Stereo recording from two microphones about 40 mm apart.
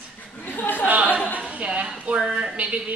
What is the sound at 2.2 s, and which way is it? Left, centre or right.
Speech, centre.